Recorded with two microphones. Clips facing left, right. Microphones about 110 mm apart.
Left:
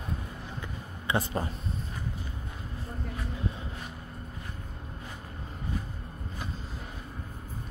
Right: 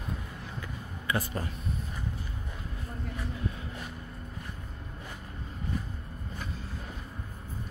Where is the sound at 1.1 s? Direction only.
25° left (ahead or behind).